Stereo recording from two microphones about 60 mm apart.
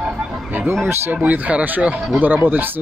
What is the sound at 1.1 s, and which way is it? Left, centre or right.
Speech, right.